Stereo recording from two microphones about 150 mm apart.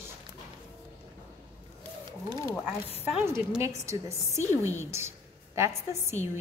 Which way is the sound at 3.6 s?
20° right (ahead or behind).